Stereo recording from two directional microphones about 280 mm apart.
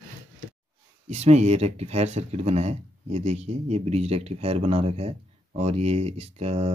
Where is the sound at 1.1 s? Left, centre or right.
Right.